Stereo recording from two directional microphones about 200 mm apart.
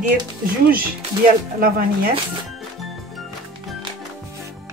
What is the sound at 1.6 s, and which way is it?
Speech, 45° right (ahead or behind).